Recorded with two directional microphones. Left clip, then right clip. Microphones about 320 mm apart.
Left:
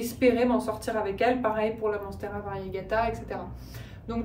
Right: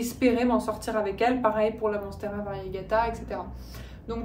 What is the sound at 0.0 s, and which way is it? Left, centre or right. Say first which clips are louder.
A woman's voice: left 1 dB; centre.